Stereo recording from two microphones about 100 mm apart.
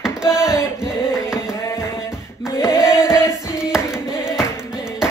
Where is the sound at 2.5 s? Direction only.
30° left (ahead or behind).